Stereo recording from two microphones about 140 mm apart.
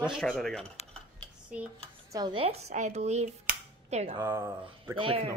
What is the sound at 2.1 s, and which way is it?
Speech, 30° right (ahead or behind).